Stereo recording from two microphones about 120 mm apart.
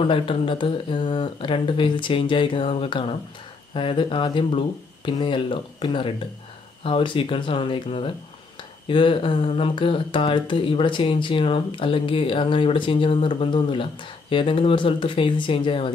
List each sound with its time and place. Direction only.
0.0 s speech: 45° left (ahead or behind)